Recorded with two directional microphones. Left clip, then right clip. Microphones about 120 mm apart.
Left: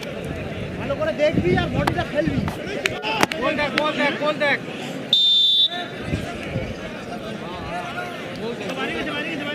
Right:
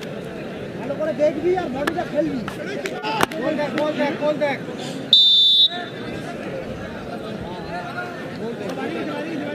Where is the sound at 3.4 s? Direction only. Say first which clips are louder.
Left 1 dB; 35° left (ahead or behind).